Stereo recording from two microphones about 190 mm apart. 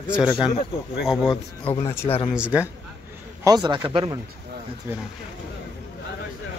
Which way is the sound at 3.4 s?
20° right (ahead or behind).